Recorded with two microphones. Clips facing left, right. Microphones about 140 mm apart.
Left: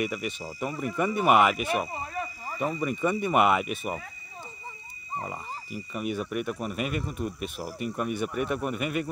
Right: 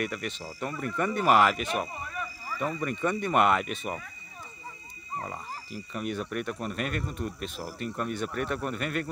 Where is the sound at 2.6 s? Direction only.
10° left (ahead or behind).